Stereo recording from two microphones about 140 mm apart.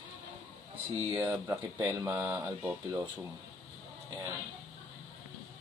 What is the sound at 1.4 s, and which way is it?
Speech, 20° right (ahead or behind).